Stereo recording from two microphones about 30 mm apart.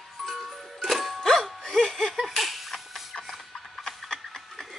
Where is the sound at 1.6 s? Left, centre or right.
Centre.